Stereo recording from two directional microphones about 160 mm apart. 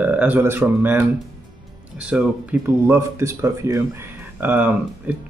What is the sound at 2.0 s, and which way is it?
Speech, 5° right (ahead or behind).